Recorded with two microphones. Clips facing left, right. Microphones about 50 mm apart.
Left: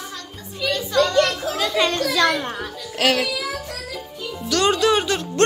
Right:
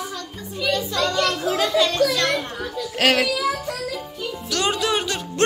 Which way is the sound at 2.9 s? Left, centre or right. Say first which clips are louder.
Right 1 dB; right.